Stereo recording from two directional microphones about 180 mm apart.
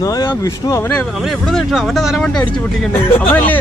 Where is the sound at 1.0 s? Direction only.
Centre (ahead or behind).